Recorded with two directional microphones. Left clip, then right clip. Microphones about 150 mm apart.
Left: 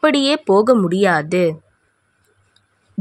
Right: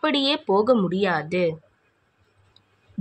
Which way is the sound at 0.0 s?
50° left (ahead or behind).